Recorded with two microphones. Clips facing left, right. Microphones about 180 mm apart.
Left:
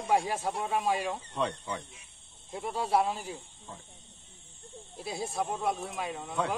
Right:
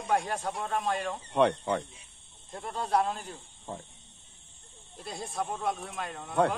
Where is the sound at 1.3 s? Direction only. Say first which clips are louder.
Right 11 dB; 65° right (ahead or behind).